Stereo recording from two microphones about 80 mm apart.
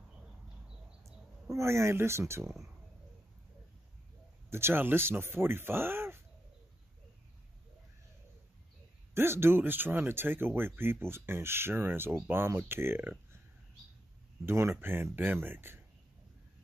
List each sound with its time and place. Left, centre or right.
1.0 s speech: right
4.5 s speech: right
9.1 s speech: right
14.4 s speech: right